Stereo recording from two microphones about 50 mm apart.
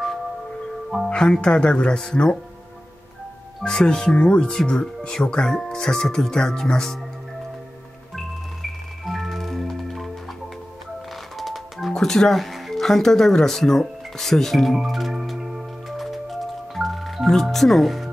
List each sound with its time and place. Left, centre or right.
1.1 s speech: centre
3.6 s speech: centre
9.0 s music: centre
11.3 s music: centre
11.9 s speech: centre
14.8 s music: centre